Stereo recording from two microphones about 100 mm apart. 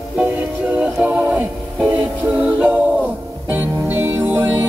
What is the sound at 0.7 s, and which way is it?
Music, 15° right (ahead or behind).